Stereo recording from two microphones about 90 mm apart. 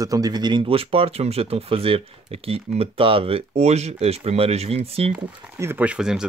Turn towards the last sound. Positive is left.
turn(degrees=-5)  # may be behind; listen again after turning